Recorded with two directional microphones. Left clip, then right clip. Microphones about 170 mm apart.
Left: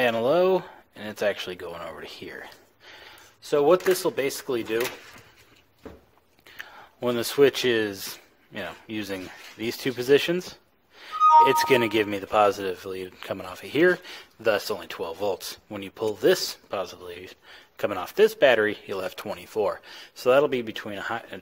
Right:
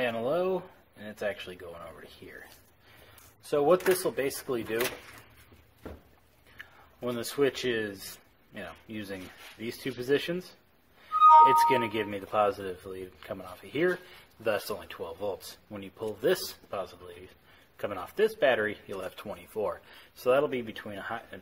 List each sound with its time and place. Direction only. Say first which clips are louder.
0.0 s speech: left 8 dB; 65° left (ahead or behind)
3.4 s speech: left 4 dB; 50° left (ahead or behind)
6.6 s speech: left 8 dB; 60° left (ahead or behind)
14.4 s speech: left 6 dB; 45° left (ahead or behind)